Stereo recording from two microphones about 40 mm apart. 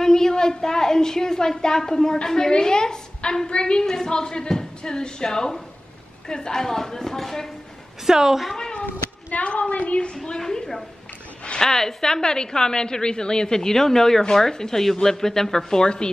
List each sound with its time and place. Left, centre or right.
0.0 s a woman's voice: centre
8.0 s a woman's voice: centre
8.8 s a woman's voice: left
10.2 s a woman's voice: centre